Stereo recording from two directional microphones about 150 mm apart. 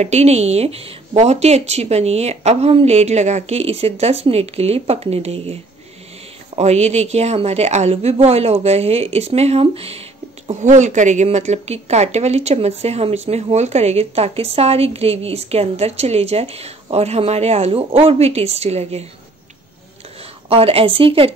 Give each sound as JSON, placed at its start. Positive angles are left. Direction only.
{"t": 0.0, "sound": "a woman's voice", "side_deg": -45}
{"t": 20.4, "sound": "speech", "side_deg": -40}